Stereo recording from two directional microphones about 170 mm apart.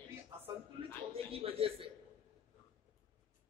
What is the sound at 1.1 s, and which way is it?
Speech, 35° right (ahead or behind).